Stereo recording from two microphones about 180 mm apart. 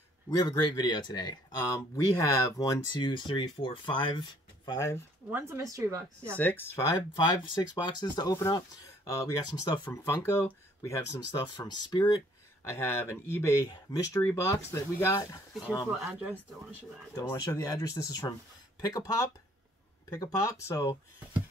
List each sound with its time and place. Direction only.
0.3 s speech: 25° left (ahead or behind)
5.3 s speech: 15° right (ahead or behind)
6.3 s speech: 10° left (ahead or behind)
15.9 s speech: 10° right (ahead or behind)
17.1 s speech: 15° left (ahead or behind)